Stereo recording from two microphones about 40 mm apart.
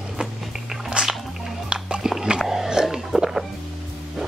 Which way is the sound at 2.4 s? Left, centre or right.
Centre.